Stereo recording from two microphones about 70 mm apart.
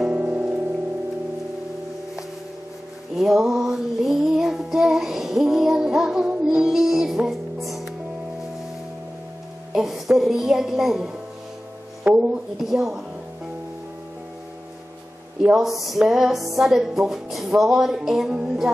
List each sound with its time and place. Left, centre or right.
0.1 s music: centre
3.2 s music: centre
9.7 s a woman's voice: centre
12.0 s music: right
12.5 s music: centre
15.5 s music: centre